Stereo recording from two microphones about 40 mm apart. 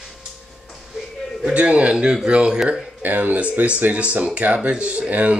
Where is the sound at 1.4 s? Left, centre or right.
Right.